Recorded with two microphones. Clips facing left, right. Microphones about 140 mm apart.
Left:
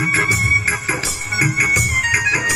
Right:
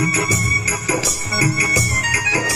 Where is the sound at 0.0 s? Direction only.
15° right (ahead or behind).